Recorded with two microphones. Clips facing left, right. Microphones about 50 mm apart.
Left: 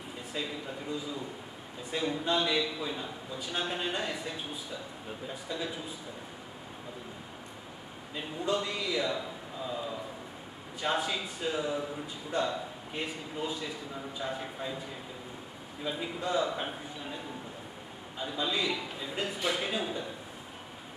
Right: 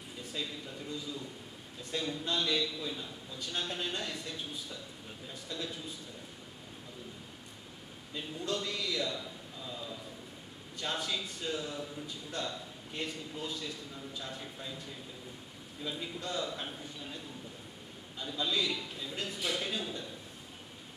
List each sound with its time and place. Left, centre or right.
0.3 s a man's voice: centre
8.4 s a man's voice: centre
15.8 s a man's voice: centre
18.2 s a man's voice: centre